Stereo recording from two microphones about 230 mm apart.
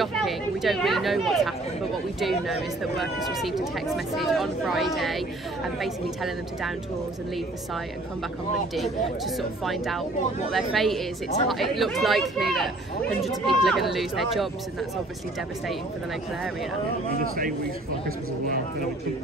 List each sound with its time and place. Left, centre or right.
0.0 s speech: centre
8.7 s speech: centre
17.2 s speech: right